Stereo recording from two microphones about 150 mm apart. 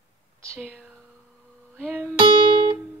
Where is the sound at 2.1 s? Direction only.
35° right (ahead or behind).